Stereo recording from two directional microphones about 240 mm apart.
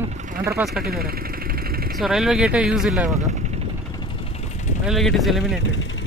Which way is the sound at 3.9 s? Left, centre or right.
Centre.